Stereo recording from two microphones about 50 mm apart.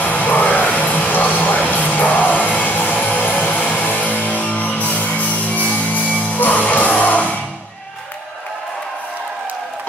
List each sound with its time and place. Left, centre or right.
0.0 s music: left